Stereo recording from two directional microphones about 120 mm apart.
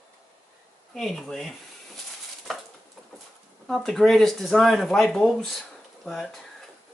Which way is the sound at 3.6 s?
5° left (ahead or behind).